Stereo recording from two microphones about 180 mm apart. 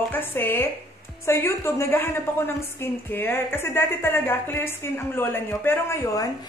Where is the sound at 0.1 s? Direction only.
10° left (ahead or behind).